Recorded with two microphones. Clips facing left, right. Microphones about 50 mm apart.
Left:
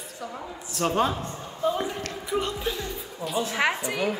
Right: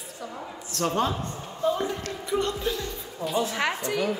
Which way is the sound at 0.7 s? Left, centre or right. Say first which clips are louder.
Left 1 dB; centre.